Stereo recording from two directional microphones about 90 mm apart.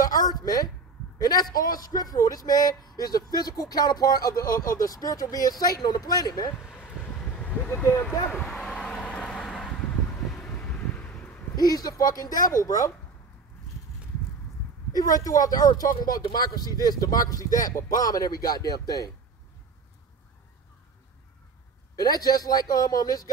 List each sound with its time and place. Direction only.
0.0 s a sound: 45° left (ahead or behind)
1.1 s a man's voice: 45° left (ahead or behind)
7.2 s speech: 15° left (ahead or behind)
8.4 s vehicle: 5° left (ahead or behind)
10.3 s a sound: 10° left (ahead or behind)
11.5 s a man's voice: 45° left (ahead or behind)
14.9 s a man's voice: 45° left (ahead or behind)
21.9 s a man's voice: 45° left (ahead or behind)